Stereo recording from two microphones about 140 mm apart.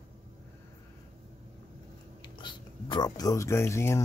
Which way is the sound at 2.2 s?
35° left (ahead or behind).